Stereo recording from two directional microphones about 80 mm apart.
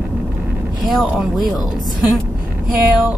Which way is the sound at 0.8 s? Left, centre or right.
Centre.